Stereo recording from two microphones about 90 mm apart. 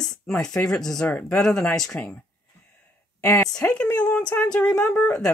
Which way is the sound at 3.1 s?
25° left (ahead or behind).